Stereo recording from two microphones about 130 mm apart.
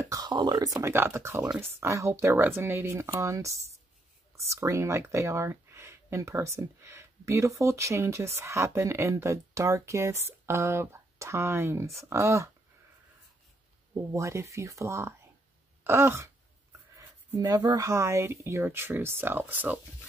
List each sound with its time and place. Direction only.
0.0 s speech: 30° right (ahead or behind)
14.1 s speech: 25° right (ahead or behind)
15.8 s wail: 20° right (ahead or behind)
17.4 s speech: 30° right (ahead or behind); by 19.8 s 15° right (ahead or behind)